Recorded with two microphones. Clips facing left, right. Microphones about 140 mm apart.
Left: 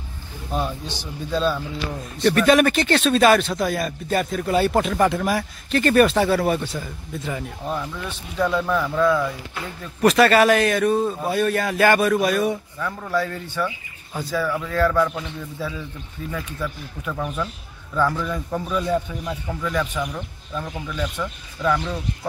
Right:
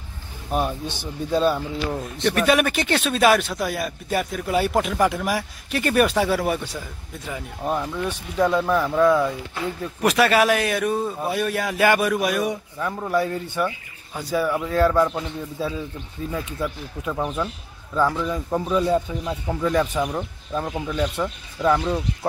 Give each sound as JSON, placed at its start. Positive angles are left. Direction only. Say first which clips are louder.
{"t": 0.5, "sound": "speech", "louder": "right 2 dB", "side_deg": -15}
{"t": 2.3, "sound": "speech", "louder": "left 3 dB", "side_deg": -10}
{"t": 7.6, "sound": "a man's voice", "louder": "right 6 dB", "side_deg": -15}
{"t": 19.6, "sound": "speech", "louder": "right 4 dB", "side_deg": -35}